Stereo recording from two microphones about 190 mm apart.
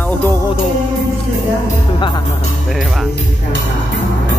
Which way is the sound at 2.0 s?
25° left (ahead or behind).